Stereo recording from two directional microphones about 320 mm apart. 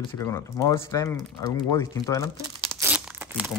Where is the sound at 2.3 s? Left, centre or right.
Centre.